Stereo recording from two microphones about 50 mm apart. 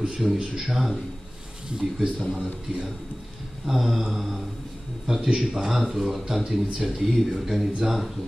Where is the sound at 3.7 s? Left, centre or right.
Centre.